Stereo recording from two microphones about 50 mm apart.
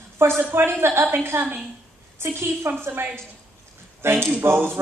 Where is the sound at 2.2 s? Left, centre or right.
Right.